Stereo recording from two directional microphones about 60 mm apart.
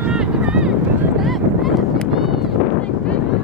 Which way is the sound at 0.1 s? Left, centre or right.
Centre.